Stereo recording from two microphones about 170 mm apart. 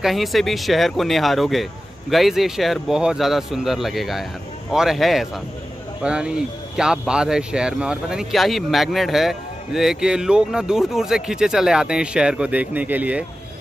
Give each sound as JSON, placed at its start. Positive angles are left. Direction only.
{"t": 0.0, "sound": "speech", "side_deg": 0}